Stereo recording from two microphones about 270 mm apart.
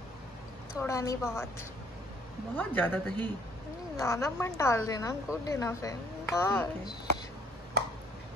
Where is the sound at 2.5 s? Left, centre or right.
Centre.